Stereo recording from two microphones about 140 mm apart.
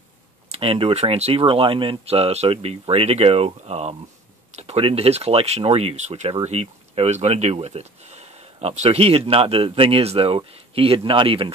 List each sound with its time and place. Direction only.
0.5 s speech: 45° right (ahead or behind)